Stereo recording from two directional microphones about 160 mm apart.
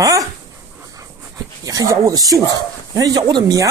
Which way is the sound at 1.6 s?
20° right (ahead or behind).